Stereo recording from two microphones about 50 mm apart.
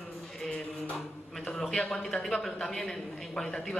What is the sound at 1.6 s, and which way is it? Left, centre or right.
A man's voice, centre.